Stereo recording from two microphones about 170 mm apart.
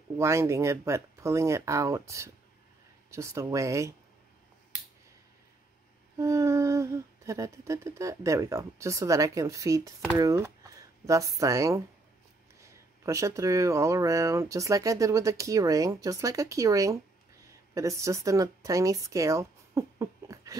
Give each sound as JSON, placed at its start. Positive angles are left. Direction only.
{"t": 0.2, "sound": "humming", "side_deg": -15}
{"t": 6.1, "sound": "humming", "side_deg": -20}
{"t": 10.1, "sound": "speech", "side_deg": -20}